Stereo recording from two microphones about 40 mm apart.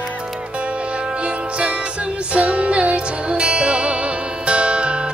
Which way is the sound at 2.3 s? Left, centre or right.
Right.